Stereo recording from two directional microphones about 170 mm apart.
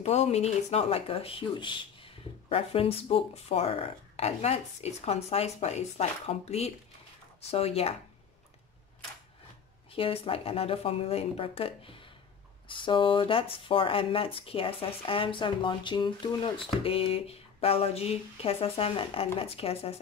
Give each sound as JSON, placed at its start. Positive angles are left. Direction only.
{"t": 0.0, "sound": "speech", "side_deg": 40}
{"t": 9.9, "sound": "speech", "side_deg": 35}